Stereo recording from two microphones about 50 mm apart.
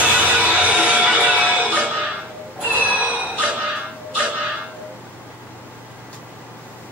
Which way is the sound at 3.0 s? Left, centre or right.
Right.